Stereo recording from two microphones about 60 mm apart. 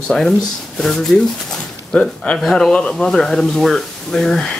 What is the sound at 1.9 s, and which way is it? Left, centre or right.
Speech, centre.